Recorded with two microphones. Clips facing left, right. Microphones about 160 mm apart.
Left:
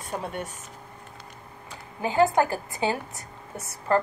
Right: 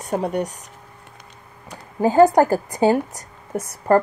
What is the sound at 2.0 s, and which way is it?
Speech, 40° right (ahead or behind).